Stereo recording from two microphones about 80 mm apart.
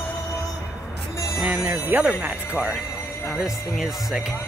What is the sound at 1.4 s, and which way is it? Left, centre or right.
Music, centre.